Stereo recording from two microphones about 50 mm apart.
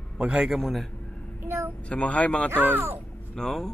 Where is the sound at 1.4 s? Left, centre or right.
Right.